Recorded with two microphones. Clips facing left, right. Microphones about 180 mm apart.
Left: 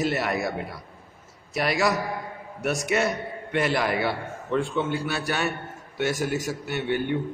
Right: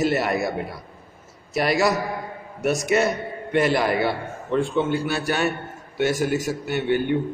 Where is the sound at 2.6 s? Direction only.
40° right (ahead or behind).